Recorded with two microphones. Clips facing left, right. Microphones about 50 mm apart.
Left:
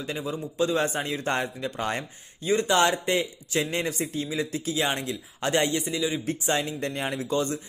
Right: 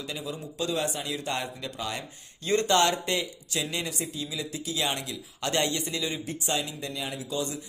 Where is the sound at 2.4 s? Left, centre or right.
Centre.